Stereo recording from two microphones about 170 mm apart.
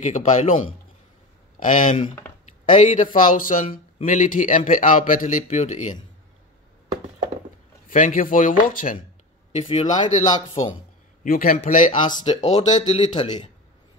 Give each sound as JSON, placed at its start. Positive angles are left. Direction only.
{"t": 0.0, "sound": "speech", "side_deg": 45}
{"t": 7.9, "sound": "speech", "side_deg": 50}
{"t": 9.6, "sound": "speech", "side_deg": 40}
{"t": 11.2, "sound": "speech", "side_deg": 60}